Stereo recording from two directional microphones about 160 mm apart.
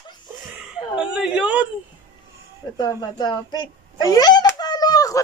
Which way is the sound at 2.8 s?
25° left (ahead or behind).